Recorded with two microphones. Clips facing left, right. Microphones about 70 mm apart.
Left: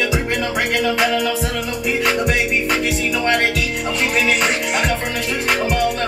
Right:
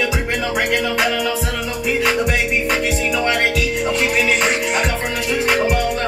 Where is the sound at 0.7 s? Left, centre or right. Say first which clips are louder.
Left 2 dB; centre.